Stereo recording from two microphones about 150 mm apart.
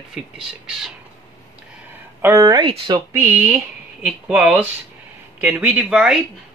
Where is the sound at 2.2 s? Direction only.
20° right (ahead or behind).